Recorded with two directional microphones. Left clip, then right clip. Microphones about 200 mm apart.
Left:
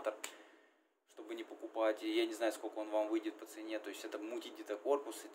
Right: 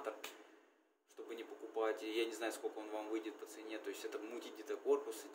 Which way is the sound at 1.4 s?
35° left (ahead or behind).